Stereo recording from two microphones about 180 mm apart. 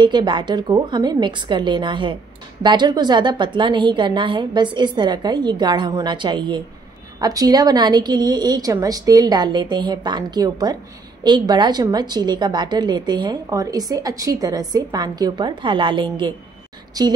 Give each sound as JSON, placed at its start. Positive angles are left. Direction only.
{"t": 0.0, "sound": "a woman's voice", "side_deg": -25}